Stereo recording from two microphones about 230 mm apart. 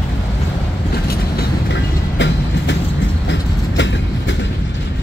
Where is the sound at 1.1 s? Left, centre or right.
Left.